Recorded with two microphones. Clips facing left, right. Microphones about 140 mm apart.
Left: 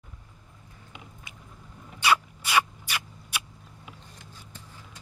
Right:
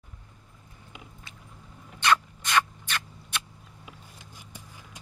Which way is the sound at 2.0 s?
10° left (ahead or behind).